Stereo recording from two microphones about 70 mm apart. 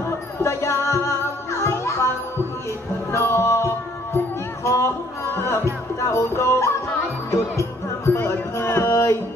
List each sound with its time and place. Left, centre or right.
0.4 s music: left
3.1 s music: left